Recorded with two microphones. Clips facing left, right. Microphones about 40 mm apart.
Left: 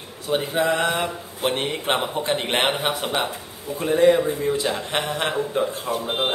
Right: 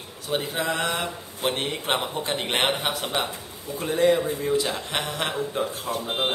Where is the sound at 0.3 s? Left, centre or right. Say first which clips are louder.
Left 5 dB; centre.